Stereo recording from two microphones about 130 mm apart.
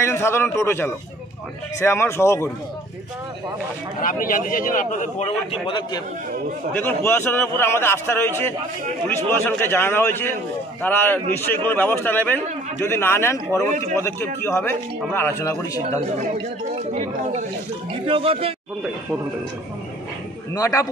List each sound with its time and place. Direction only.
0.0 s speech: 20° left (ahead or behind)
4.0 s a man's voice: 90° left; by 5.3 s 75° left (ahead or behind)
5.5 s a man's voice: 40° left (ahead or behind)
6.7 s a man's voice: 15° left (ahead or behind)
16.7 s speech: 65° right (ahead or behind)
18.0 s speech: 45° right (ahead or behind)
20.5 s speech: 25° left (ahead or behind)